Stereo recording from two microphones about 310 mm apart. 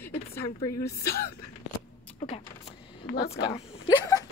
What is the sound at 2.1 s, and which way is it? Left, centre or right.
Speech, centre.